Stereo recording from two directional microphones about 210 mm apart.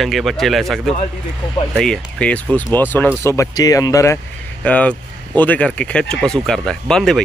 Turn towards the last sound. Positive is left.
turn(degrees=0)  # may be behind; listen again after turning